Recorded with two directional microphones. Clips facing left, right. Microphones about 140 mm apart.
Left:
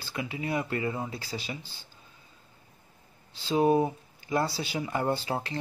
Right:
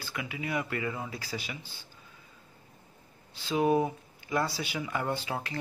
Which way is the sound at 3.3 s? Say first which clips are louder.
Left 2 dB; 30° left (ahead or behind).